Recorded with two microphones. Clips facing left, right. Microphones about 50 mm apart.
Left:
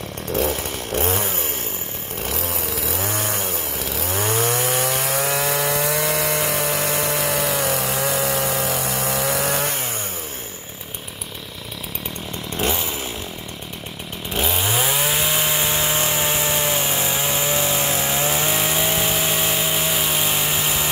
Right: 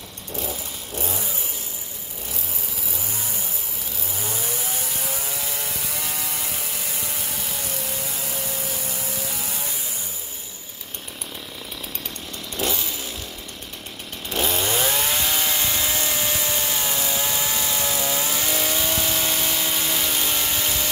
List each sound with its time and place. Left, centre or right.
0.3 s chainsaw: left
2.2 s chainsaw: left
12.5 s chainsaw: left
14.3 s chainsaw: centre